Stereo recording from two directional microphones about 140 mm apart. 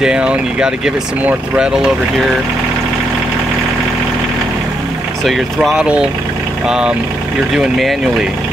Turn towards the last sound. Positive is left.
turn(degrees=0)  # may be behind; listen again after turning